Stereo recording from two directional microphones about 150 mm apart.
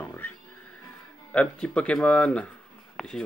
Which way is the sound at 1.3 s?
5° left (ahead or behind).